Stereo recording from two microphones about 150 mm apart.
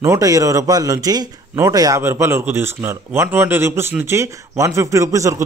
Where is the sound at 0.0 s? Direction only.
20° right (ahead or behind).